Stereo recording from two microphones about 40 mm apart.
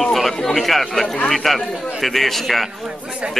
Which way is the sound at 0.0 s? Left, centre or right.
Centre.